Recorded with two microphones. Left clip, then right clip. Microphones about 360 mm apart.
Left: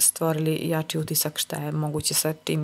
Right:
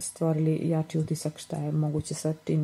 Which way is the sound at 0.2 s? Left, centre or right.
Left.